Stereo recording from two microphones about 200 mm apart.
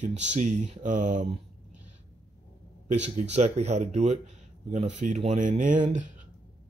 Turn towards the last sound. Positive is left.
turn(degrees=-40)  # may be behind; listen again after turning